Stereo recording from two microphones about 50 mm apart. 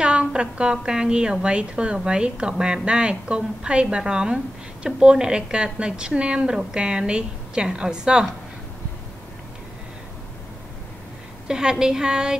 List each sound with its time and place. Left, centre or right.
0.0 s a woman's voice: centre
11.4 s a woman's voice: centre